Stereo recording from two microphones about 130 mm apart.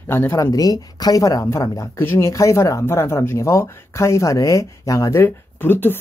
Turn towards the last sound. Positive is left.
turn(degrees=15)  # may be behind; listen again after turning